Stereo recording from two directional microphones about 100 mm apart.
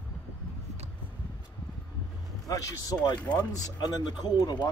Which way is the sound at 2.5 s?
35° left (ahead or behind).